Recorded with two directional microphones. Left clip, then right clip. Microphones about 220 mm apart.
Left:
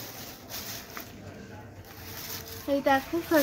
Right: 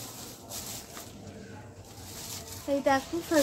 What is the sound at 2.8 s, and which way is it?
Speech, 15° right (ahead or behind).